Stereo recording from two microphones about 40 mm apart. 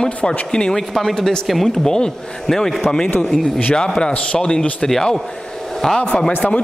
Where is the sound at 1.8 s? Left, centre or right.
Centre.